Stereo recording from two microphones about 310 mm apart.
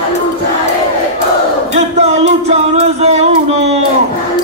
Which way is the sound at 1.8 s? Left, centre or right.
Right.